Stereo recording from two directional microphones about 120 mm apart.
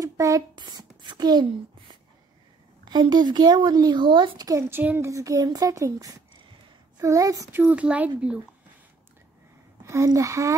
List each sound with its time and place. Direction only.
0.0 s a woman's voice: 25° right (ahead or behind)
4.6 s speech: 20° right (ahead or behind)
7.6 s speech: 10° right (ahead or behind)
9.8 s speech: 25° right (ahead or behind)